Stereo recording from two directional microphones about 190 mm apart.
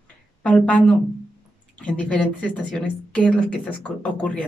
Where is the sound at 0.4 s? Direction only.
5° left (ahead or behind).